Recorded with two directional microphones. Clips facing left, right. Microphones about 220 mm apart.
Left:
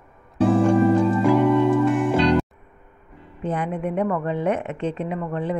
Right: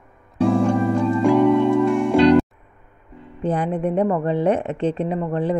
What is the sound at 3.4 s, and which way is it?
A woman's voice, 35° right (ahead or behind).